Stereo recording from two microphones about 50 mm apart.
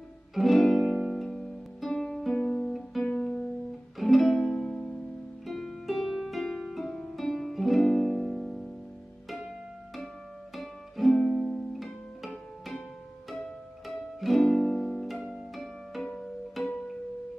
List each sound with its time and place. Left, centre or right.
0.3 s music: centre
2.3 s music: left
4.0 s music: centre
10.5 s music: centre
13.8 s music: centre
15.3 s harp: centre
16.0 s music: centre
16.6 s music: centre